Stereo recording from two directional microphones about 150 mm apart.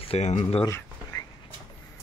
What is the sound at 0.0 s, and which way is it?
Speech, 45° left (ahead or behind).